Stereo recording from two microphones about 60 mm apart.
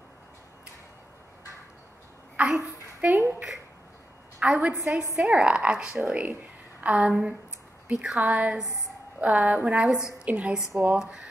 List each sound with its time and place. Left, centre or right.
2.4 s a sound: right
3.0 s a woman's voice: right
4.4 s a woman's voice: right
6.8 s a woman's voice: right